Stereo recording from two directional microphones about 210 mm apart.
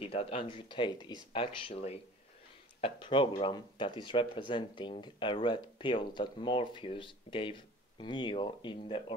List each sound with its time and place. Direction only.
0.0 s speech: 25° left (ahead or behind)